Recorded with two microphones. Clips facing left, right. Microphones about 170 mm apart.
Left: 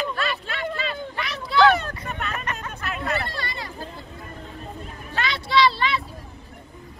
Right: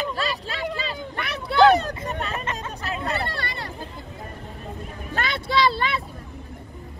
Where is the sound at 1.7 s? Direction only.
35° right (ahead or behind).